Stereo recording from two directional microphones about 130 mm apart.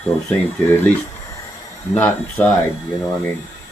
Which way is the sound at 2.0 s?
10° left (ahead or behind).